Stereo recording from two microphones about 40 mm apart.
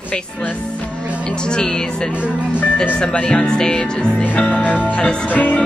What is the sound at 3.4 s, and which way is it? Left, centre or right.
Speech, centre.